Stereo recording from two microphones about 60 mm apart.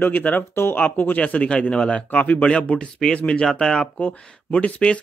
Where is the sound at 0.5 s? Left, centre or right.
Left.